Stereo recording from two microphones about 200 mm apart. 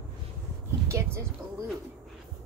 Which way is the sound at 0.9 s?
15° right (ahead or behind).